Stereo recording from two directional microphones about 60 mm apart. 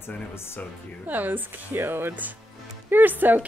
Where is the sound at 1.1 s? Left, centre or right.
Right.